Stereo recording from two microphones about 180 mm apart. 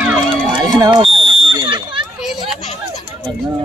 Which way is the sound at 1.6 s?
25° right (ahead or behind).